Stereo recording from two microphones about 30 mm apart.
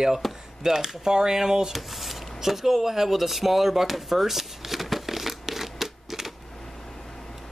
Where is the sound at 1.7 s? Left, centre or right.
Centre.